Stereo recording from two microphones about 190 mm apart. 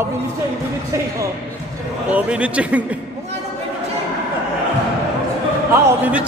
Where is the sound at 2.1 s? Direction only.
5° right (ahead or behind).